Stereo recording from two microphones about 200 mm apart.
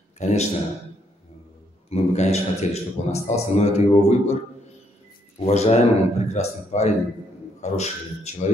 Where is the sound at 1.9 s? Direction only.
35° left (ahead or behind).